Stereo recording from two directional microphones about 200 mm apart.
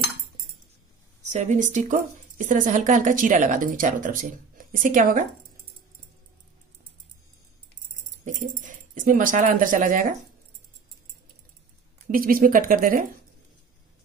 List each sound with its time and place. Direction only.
1.3 s speech: 35° right (ahead or behind)
8.3 s speech: 40° right (ahead or behind)
12.1 s speech: 45° right (ahead or behind)